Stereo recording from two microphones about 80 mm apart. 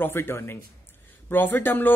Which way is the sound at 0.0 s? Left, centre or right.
Left.